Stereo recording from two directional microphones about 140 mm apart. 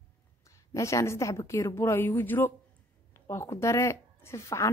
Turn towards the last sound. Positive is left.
turn(degrees=20)  # may be behind; listen again after turning